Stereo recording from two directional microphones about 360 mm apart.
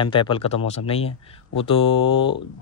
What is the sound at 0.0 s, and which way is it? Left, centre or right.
Speech, centre.